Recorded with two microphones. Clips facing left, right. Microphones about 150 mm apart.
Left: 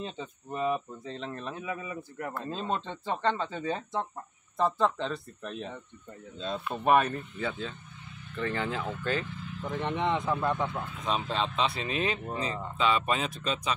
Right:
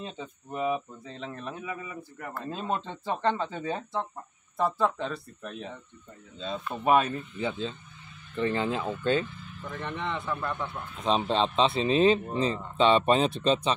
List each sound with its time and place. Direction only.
0.0 s speech: 5° right (ahead or behind); by 9.2 s 20° right (ahead or behind)
9.7 s speech: 20° left (ahead or behind)
11.1 s speech: 25° right (ahead or behind)